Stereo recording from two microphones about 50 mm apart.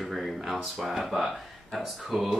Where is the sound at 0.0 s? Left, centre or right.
Centre.